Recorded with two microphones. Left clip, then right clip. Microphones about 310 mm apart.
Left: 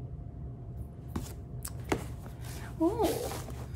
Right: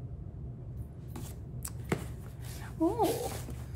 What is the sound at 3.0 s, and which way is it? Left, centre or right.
Speech, centre.